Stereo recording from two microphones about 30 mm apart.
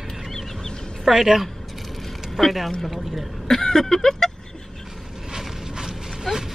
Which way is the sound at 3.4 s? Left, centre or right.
Centre.